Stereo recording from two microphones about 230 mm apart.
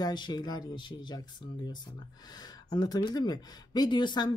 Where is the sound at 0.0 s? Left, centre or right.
Centre.